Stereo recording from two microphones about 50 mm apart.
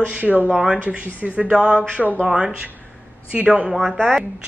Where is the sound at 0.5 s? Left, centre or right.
Centre.